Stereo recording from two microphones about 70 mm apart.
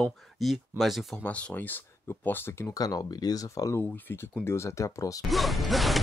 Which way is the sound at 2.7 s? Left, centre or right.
Left.